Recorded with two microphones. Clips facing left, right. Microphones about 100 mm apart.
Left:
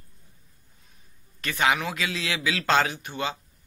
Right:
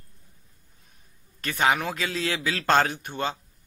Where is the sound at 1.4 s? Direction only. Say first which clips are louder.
Right 1 dB; 45° right (ahead or behind).